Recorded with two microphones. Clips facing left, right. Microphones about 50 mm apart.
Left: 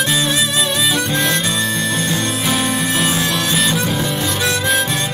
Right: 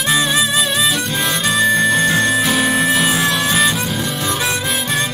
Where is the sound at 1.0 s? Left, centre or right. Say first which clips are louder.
Even; centre.